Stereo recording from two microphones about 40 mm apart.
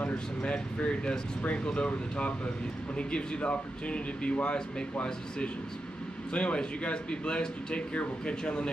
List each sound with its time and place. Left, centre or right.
0.0 s speech: left
6.3 s speech: left